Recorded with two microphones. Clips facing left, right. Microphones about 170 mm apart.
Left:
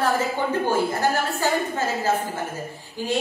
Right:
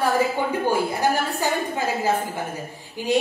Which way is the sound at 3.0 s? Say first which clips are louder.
Right 2 dB; 15° right (ahead or behind).